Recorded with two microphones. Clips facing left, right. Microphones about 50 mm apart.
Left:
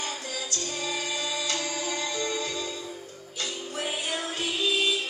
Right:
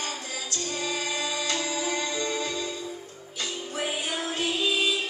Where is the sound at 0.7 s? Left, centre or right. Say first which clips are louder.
Right 2 dB; centre.